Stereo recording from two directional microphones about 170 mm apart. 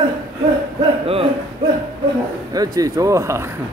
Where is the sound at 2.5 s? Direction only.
20° right (ahead or behind).